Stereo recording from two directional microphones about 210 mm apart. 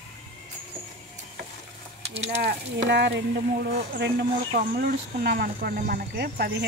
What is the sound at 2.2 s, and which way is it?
Speech, 55° right (ahead or behind).